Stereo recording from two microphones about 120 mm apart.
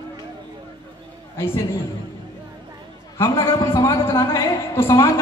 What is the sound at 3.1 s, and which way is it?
A man's voice, 25° left (ahead or behind).